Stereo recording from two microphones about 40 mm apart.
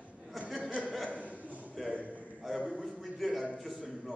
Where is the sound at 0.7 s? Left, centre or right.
Right.